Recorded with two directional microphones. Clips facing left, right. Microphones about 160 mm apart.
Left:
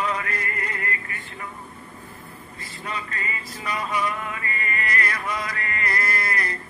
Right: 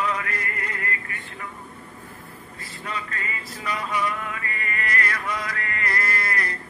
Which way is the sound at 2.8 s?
25° left (ahead or behind).